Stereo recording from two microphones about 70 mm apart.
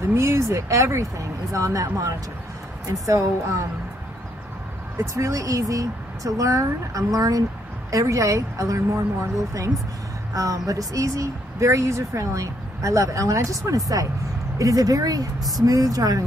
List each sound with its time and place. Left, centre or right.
0.0 s speech: right
5.0 s speech: right